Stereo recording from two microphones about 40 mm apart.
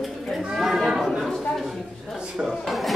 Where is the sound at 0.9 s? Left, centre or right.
Centre.